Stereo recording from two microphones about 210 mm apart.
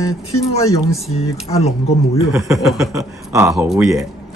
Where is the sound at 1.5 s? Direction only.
30° left (ahead or behind).